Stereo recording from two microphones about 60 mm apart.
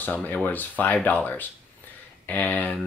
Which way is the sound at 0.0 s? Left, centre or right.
Left.